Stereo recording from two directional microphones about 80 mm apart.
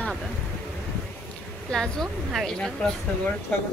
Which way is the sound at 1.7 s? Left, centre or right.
Centre.